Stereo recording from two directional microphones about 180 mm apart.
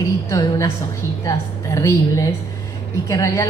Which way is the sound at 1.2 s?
20° left (ahead or behind).